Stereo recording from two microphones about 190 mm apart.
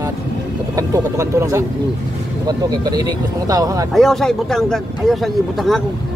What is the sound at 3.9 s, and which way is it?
Speech, centre (ahead or behind).